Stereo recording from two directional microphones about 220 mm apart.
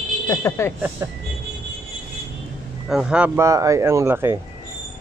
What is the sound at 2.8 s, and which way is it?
Speech, 5° right (ahead or behind).